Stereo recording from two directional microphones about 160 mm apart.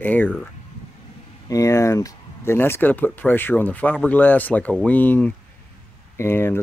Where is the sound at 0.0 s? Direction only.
10° left (ahead or behind).